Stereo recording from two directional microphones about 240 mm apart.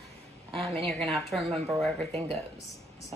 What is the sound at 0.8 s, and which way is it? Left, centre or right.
Speech, centre.